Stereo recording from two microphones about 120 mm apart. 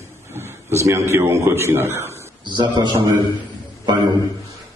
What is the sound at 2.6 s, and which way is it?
A man's voice, 40° right (ahead or behind).